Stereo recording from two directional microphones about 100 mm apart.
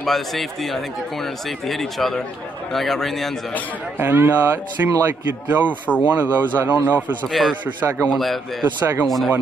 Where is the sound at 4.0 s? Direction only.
20° right (ahead or behind).